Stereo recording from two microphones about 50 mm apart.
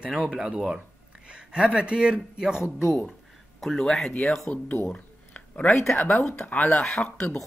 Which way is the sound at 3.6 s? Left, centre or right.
Centre.